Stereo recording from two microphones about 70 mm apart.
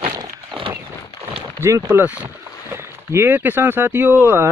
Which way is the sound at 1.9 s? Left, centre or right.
Right.